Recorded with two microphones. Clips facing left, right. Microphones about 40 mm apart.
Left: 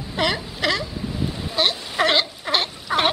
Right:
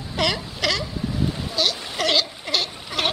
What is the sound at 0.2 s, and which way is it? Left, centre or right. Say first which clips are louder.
Baby cry: left 1 dB; left.